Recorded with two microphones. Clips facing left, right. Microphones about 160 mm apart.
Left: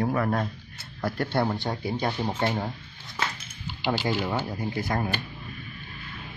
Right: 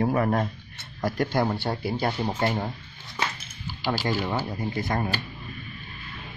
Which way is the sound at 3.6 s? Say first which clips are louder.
Left 1 dB; 20° left (ahead or behind).